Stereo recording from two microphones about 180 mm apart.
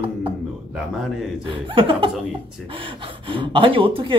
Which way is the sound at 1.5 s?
30° right (ahead or behind).